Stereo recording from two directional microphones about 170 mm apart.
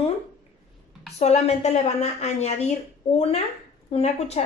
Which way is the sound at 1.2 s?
40° left (ahead or behind).